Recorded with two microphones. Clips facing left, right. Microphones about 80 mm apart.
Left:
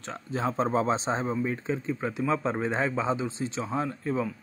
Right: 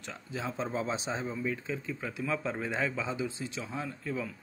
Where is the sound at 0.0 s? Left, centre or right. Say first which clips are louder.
Left 7 dB; left.